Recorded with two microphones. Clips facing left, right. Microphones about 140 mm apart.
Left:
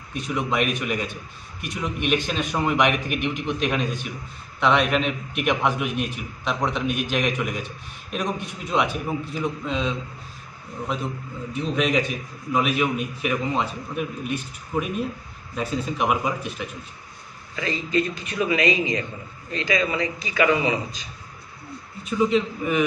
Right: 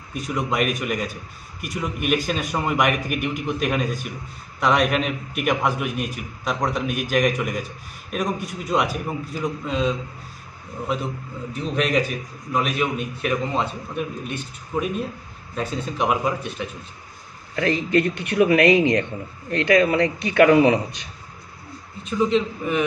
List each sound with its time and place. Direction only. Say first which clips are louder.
0.1 s a man's voice: even; centre (ahead or behind)
11.5 s a man's voice: right 1 dB; centre (ahead or behind)
17.6 s a man's voice: right 4 dB; 65° right (ahead or behind)
22.1 s a man's voice: right 1 dB; centre (ahead or behind)